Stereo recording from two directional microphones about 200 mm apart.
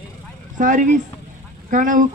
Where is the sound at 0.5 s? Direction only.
40° right (ahead or behind).